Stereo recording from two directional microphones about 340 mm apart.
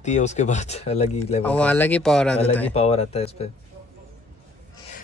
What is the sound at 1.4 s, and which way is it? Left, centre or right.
Speech, centre.